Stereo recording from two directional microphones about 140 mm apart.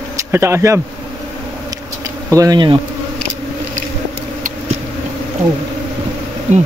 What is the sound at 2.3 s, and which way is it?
Speech, 25° right (ahead or behind).